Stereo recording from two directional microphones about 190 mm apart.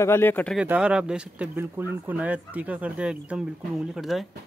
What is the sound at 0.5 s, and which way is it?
Speech, 5° right (ahead or behind).